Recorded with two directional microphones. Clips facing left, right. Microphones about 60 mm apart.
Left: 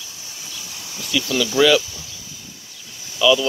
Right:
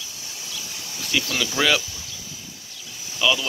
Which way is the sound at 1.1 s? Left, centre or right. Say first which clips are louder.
Left 4 dB; right.